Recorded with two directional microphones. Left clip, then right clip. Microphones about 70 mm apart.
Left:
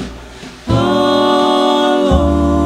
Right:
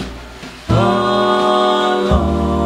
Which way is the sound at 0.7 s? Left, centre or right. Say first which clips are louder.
Left 2 dB; centre.